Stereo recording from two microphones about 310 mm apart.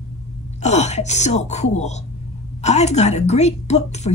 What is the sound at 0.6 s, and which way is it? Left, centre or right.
A woman's voice, left.